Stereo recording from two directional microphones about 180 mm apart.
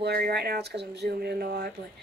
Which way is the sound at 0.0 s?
60° right (ahead or behind).